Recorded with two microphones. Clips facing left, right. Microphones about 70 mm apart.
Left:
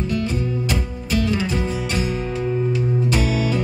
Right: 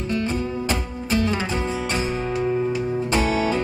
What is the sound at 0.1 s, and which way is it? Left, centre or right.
Music, right.